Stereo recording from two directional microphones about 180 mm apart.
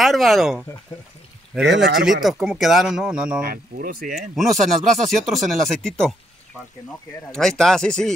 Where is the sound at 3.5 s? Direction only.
50° right (ahead or behind).